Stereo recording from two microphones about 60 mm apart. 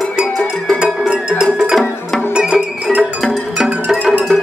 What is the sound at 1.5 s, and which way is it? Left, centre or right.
Music, centre.